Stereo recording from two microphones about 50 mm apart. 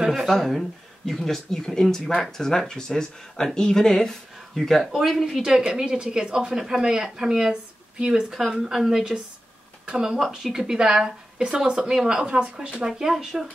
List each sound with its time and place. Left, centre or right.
0.0 s speech: centre
0.3 s speech: centre
4.8 s speech: centre
5.5 s speech: centre